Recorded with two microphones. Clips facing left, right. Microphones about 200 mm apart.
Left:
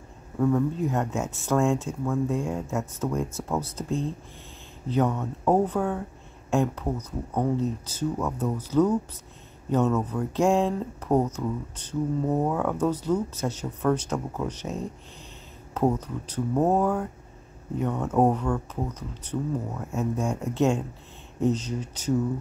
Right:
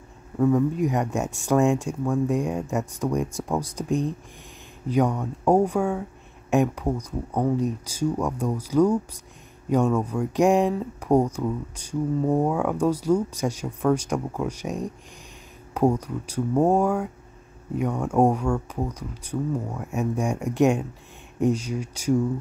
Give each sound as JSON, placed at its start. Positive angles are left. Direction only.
{"t": 0.4, "sound": "speech", "side_deg": -10}